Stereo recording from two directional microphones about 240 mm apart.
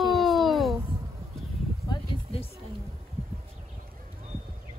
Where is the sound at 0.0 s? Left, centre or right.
Centre.